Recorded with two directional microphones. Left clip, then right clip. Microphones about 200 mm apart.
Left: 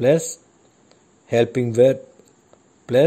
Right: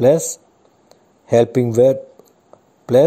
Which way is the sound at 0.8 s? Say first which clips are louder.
Right 7 dB; 10° right (ahead or behind).